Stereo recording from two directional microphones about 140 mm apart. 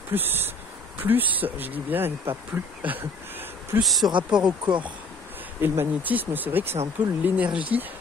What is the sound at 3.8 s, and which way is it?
Speech, centre (ahead or behind).